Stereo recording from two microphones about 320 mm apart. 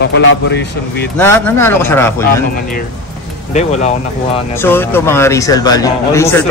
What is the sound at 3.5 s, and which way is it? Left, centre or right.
Speech, left.